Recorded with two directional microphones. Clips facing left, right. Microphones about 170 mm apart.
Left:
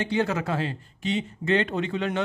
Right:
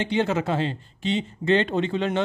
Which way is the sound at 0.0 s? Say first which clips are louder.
Right 2 dB; 25° right (ahead or behind).